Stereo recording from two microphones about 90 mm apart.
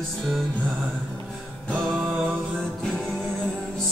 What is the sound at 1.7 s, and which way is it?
Music, 5° left (ahead or behind).